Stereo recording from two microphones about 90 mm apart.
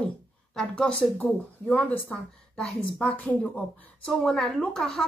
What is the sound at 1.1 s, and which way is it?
A woman's voice, 15° left (ahead or behind).